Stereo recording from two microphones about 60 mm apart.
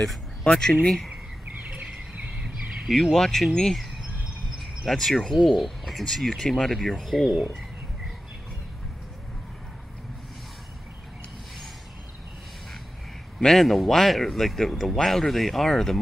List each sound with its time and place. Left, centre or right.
0.0 s a sound: centre
0.5 s speech: centre
1.7 s bird: right
2.9 s speech: centre
4.8 s speech: centre
13.4 s speech: centre